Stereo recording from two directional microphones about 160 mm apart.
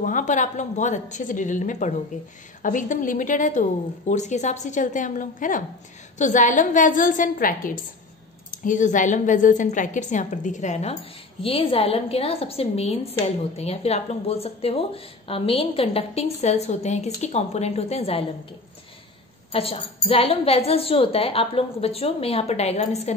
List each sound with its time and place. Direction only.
0.0 s a woman's voice: 50° left (ahead or behind)
19.5 s a woman's voice: 35° left (ahead or behind)